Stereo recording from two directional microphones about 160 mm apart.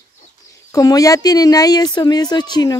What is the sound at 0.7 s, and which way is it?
Speech, 20° left (ahead or behind).